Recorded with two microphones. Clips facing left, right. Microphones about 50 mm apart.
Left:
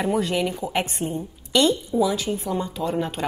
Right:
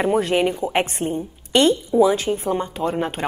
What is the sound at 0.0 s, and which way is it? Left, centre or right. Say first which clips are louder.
A woman's voice: right 4 dB; right.